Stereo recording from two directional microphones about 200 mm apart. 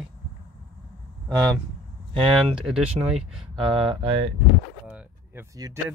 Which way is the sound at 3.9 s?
30° right (ahead or behind).